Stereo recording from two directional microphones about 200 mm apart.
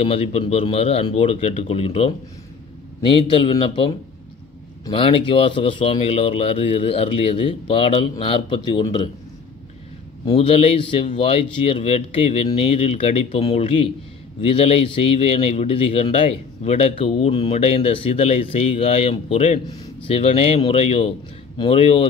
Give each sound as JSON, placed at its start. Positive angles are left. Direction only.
{"t": 0.0, "sound": "a man's voice", "side_deg": 30}
{"t": 10.2, "sound": "a man's voice", "side_deg": 25}
{"t": 19.7, "sound": "a sound", "side_deg": 20}
{"t": 20.2, "sound": "a man's voice", "side_deg": 30}